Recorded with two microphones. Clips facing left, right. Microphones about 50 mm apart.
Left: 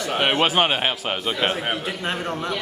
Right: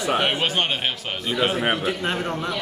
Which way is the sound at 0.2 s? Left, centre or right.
Centre.